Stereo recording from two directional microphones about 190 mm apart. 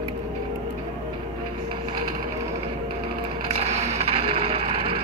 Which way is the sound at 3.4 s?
30° right (ahead or behind).